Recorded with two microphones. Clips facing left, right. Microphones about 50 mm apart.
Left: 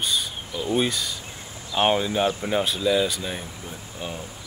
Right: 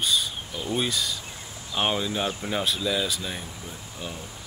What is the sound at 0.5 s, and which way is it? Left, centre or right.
Speech, centre.